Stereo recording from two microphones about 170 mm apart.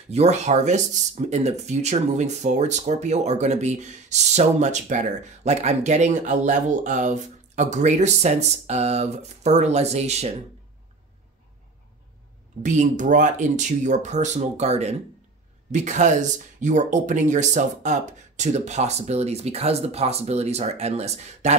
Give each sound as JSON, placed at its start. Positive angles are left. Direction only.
{"t": 0.1, "sound": "speech", "side_deg": -40}
{"t": 12.6, "sound": "speech", "side_deg": -45}